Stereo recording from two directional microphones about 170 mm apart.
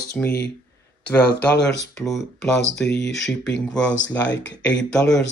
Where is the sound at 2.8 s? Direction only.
90° left.